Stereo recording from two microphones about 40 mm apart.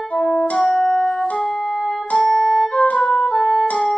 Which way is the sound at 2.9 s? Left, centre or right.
Left.